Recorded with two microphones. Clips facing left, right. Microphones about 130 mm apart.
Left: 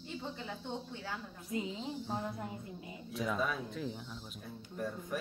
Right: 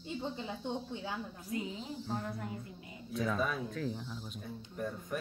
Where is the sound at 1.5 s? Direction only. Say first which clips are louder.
Left 1 dB; 25° left (ahead or behind).